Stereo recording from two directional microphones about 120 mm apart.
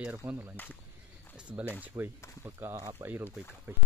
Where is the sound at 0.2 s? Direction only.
10° right (ahead or behind).